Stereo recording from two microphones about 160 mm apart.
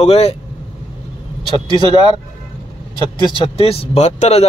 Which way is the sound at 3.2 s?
30° left (ahead or behind).